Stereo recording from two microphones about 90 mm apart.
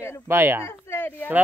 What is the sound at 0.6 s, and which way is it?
Speech, 30° left (ahead or behind).